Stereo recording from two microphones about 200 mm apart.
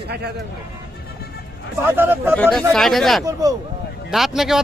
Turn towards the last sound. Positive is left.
turn(degrees=0)  # may be behind; listen again after turning